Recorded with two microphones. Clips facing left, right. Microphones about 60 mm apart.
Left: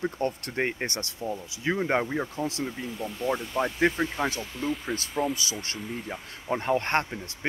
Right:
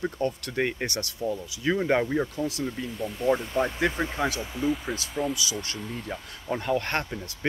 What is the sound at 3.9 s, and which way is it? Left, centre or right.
Speech, centre.